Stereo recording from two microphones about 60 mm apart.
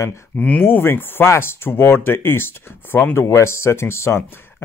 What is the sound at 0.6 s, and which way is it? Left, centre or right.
Speech, left.